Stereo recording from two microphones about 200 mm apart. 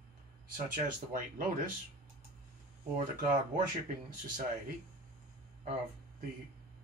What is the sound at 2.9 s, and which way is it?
Speech, 40° right (ahead or behind).